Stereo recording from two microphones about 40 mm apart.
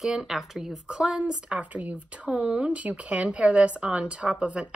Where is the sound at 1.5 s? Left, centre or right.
Right.